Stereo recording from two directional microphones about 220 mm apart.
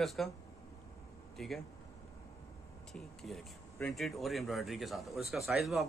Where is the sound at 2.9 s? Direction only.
Centre (ahead or behind).